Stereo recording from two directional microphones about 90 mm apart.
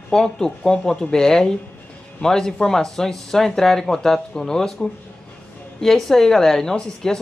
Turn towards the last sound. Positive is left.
turn(degrees=5)  # may be behind; listen again after turning